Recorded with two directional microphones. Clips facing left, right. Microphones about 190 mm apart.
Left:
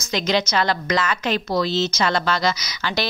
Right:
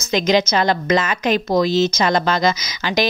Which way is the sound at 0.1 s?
20° right (ahead or behind).